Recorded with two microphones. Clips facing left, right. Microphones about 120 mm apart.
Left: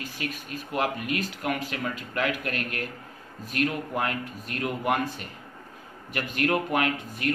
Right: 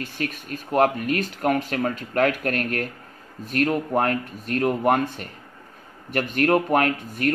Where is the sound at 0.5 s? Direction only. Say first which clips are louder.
Right 9 dB; 45° right (ahead or behind).